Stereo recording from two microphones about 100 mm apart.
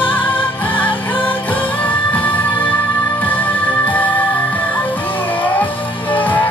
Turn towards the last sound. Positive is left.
turn(degrees=15)  # may be behind; listen again after turning